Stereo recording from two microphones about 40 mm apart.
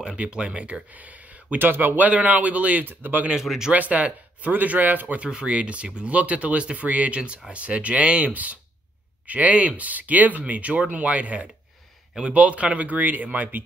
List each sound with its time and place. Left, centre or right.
0.0 s speech: right
0.9 s a sound: right
1.6 s speech: right
2.0 s speech: right
2.8 s speech: right
3.4 s speech: centre
3.7 s speech: right
5.2 s speech: right
6.1 s speech: right
7.2 s speech: right